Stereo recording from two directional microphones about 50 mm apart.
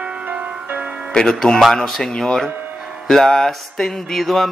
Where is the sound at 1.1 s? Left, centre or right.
Centre.